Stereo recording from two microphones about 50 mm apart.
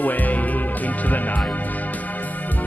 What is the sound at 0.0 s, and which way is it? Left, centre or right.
Music, left.